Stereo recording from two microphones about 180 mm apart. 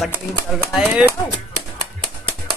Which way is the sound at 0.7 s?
5° right (ahead or behind).